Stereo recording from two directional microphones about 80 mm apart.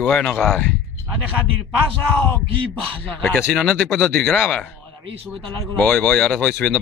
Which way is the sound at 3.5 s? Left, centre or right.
Centre.